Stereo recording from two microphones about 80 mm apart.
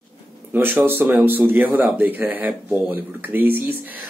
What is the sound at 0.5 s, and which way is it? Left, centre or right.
Speech, right.